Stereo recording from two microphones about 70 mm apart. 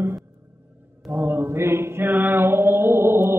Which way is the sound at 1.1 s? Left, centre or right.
Right.